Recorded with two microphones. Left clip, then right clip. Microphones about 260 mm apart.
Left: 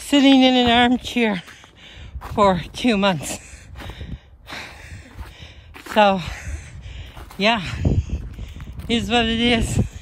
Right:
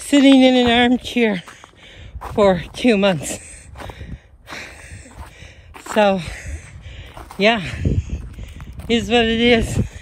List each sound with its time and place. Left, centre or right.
0.0 s speech: centre
5.9 s speech: centre
7.3 s a sound: centre
8.8 s speech: centre